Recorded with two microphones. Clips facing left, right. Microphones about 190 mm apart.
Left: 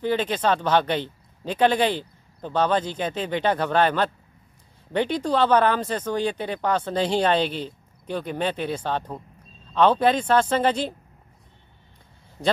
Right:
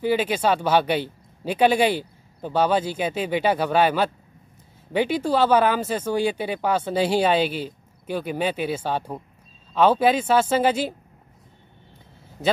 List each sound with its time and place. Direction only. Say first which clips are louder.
0.0 s speech: right 2 dB; 10° right (ahead or behind)